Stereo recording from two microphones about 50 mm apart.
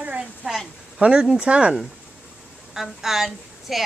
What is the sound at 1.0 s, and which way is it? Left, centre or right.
Speech, right.